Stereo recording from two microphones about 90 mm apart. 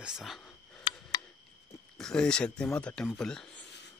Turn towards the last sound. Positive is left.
turn(degrees=5)  # may be behind; listen again after turning